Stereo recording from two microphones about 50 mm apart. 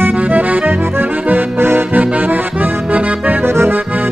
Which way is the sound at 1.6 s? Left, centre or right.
Right.